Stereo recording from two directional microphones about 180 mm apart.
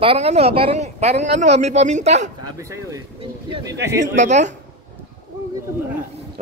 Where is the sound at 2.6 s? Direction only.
15° right (ahead or behind).